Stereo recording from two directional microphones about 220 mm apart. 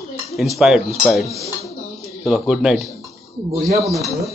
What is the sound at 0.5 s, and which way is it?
Speech, centre (ahead or behind).